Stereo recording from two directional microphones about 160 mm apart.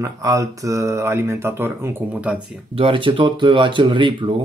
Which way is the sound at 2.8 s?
35° right (ahead or behind).